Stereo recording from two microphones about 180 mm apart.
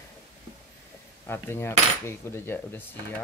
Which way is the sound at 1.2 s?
15° left (ahead or behind).